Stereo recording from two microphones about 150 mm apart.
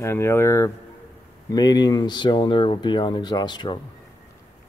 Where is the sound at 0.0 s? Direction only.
15° left (ahead or behind).